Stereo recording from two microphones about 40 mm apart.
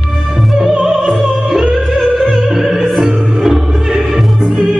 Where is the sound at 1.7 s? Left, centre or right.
Centre.